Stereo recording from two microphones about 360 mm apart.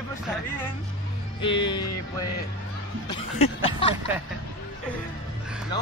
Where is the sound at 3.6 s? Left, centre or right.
Centre.